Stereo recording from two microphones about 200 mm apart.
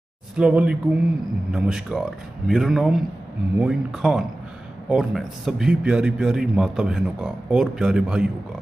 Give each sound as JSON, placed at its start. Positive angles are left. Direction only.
{"t": 0.4, "sound": "a man's voice", "side_deg": -5}